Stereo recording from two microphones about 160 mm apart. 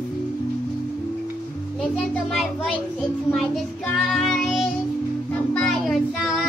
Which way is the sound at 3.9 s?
Centre (ahead or behind).